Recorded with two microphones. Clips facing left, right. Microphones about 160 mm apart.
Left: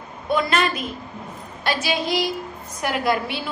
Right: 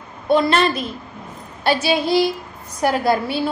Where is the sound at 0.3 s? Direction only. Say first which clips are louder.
Right 5 dB; 30° right (ahead or behind).